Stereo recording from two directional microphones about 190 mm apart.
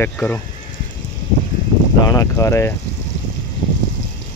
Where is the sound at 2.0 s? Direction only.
15° left (ahead or behind).